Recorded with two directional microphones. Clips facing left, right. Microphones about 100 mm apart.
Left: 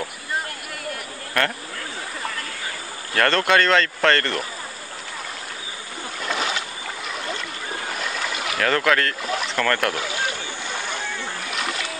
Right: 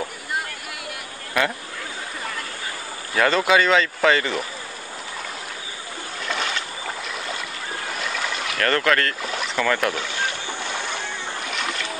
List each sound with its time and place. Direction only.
1.4 s speech: 5° right (ahead or behind)
3.2 s speech: 5° right (ahead or behind)
6.2 s boat: 5° left (ahead or behind)
8.0 s speech: centre (ahead or behind)